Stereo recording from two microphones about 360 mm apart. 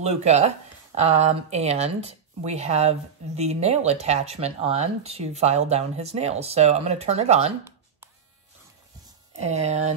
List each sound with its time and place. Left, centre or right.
0.0 s speech: centre
9.4 s speech: centre